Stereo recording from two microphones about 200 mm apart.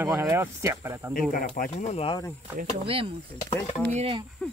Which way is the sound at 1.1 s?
45° left (ahead or behind).